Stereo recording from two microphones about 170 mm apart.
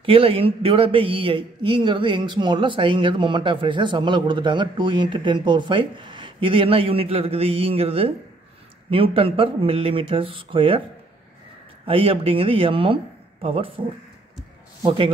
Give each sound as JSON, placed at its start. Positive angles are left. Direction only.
{"t": 0.0, "sound": "speech", "side_deg": -35}
{"t": 11.8, "sound": "a man's voice", "side_deg": -35}